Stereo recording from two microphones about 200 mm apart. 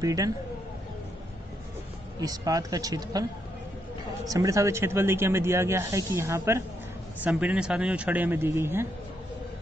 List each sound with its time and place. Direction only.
0.0 s speech: 15° right (ahead or behind)
2.1 s speech: 20° right (ahead or behind)
4.3 s speech: 15° right (ahead or behind)